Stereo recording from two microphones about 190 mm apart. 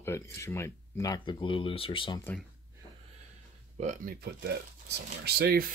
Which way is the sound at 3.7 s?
40° right (ahead or behind).